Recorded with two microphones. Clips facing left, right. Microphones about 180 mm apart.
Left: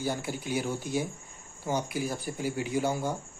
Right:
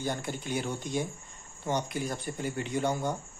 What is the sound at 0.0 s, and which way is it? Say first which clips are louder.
Speech: left 1 dB; 5° left (ahead or behind).